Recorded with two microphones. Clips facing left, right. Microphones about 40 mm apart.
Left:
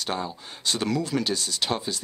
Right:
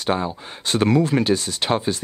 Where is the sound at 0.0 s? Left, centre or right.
Right.